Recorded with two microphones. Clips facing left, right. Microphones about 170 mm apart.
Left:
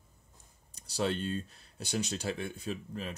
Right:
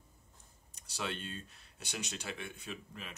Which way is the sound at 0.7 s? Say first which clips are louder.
Left 8 dB; 35° left (ahead or behind).